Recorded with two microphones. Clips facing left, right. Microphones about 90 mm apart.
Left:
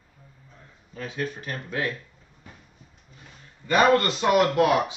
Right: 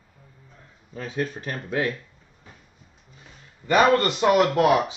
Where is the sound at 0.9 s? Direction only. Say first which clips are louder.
Right 3 dB; 30° right (ahead or behind).